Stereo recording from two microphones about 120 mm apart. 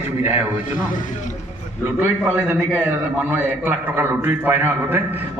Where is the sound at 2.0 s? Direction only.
10° right (ahead or behind).